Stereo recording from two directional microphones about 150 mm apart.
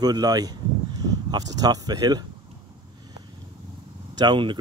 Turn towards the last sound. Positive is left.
turn(degrees=-30)  # may be behind; listen again after turning